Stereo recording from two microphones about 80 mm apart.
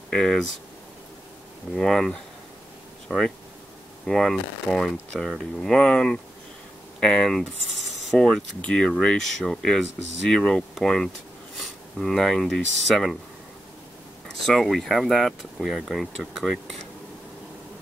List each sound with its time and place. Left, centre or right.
0.1 s speech: centre
1.8 s speech: centre
14.4 s speech: centre